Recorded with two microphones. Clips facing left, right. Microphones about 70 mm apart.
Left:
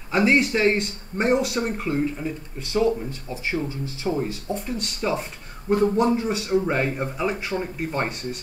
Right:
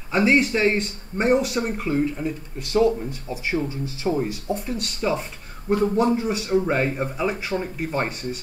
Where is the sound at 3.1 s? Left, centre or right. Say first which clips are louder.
Right 2 dB; right.